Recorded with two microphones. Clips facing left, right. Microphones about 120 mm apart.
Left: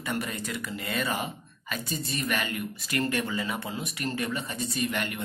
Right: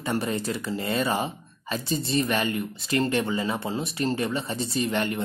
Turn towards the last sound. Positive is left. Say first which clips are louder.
# right 5 dB
turn(degrees=-30)  # may be behind; listen again after turning